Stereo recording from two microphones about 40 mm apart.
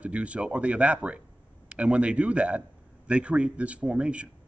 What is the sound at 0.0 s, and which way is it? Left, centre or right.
A man's voice, right.